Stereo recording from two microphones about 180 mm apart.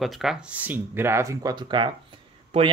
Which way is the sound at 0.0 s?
Centre (ahead or behind).